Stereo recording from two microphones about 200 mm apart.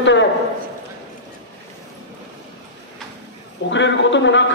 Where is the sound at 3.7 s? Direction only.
65° left (ahead or behind).